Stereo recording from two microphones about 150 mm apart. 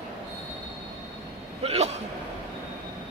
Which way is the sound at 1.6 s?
45° right (ahead or behind).